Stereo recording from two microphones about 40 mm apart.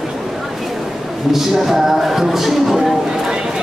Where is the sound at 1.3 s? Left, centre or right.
Centre.